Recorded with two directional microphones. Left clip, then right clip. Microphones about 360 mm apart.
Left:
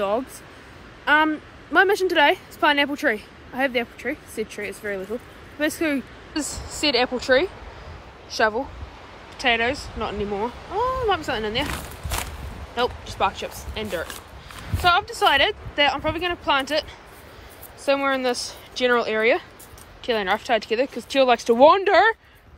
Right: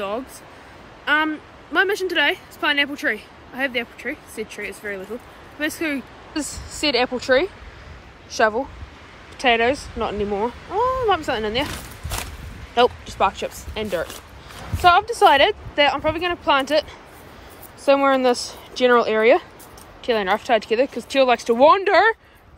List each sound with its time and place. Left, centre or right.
1.0 s a woman's voice: centre
6.4 s a woman's voice: centre
6.8 s a woman's voice: centre
17.8 s a woman's voice: centre